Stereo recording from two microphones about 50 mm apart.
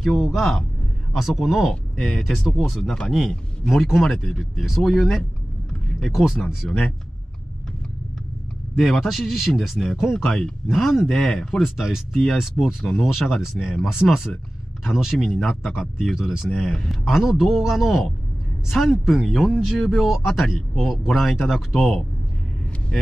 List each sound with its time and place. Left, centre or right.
0.0 s speech: centre
1.1 s speech: centre
1.7 s speech: centre
6.6 s speech: centre
8.7 s a man's voice: centre
10.2 s speech: centre
10.7 s speech: centre
11.6 s speech: centre
12.1 s speech: centre
12.4 s speech: centre
15.6 s speech: centre
16.6 s speech: centre
16.9 s speech: centre
21.7 s speech: centre